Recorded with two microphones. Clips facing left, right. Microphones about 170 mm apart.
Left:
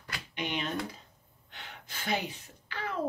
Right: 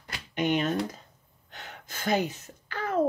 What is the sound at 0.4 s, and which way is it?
Speech, 45° right (ahead or behind).